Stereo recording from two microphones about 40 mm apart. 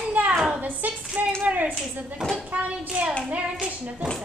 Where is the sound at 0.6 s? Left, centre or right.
Right.